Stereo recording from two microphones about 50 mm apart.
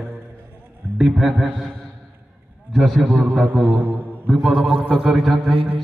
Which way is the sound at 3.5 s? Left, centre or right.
Right.